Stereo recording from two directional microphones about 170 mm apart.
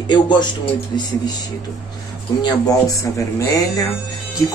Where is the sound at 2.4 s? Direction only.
20° left (ahead or behind).